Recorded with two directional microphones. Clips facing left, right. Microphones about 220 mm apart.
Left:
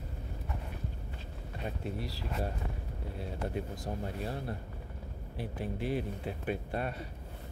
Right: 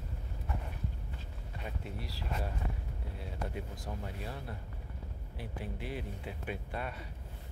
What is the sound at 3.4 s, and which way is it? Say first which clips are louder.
Speech: left 4 dB; 40° left (ahead or behind).